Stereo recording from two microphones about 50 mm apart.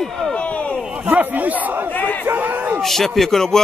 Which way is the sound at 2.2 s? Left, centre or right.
Right.